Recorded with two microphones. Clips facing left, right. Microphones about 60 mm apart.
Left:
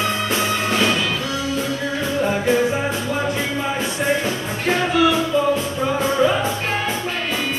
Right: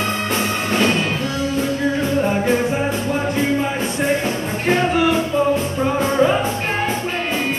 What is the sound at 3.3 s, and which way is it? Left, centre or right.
Music, right.